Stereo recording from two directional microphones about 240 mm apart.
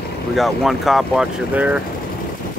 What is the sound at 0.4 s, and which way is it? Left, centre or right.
Speech, centre.